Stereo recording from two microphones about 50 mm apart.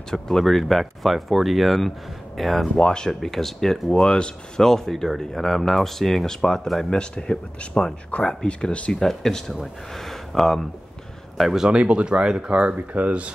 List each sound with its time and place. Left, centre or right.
0.1 s speech: centre
2.8 s speech: centre
3.1 s speech: centre
3.9 s speech: centre
9.0 s speech: centre
11.6 s speech: right
12.5 s speech: right